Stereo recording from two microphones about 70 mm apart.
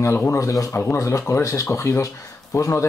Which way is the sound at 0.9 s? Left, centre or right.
Left.